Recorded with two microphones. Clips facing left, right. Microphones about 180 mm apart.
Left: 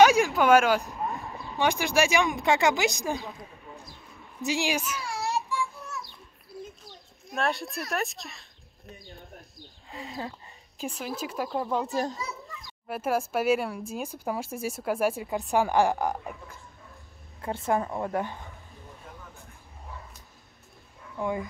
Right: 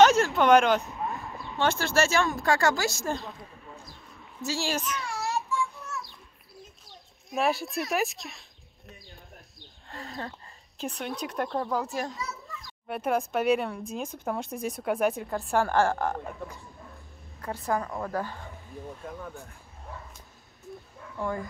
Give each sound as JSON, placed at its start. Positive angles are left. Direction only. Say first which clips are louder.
{"t": 0.0, "sound": "a sound", "louder": "even", "side_deg": 10}
{"t": 1.6, "sound": "speech", "louder": "left 1 dB", "side_deg": 15}
{"t": 3.2, "sound": "a sound", "louder": "left 2 dB", "side_deg": 0}
{"t": 4.5, "sound": "child singing", "louder": "left 2 dB", "side_deg": 15}
{"t": 9.8, "sound": "a child's voice", "louder": "left 1 dB", "side_deg": 0}
{"t": 17.4, "sound": "a woman's voice", "louder": "left 2 dB", "side_deg": 25}
{"t": 21.2, "sound": "speech", "louder": "left 2 dB", "side_deg": 15}